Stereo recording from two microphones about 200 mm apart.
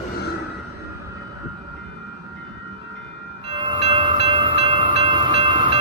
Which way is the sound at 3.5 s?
25° right (ahead or behind).